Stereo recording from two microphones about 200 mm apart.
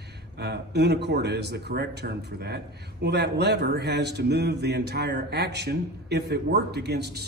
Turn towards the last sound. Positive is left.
turn(degrees=-55)  # may be behind; listen again after turning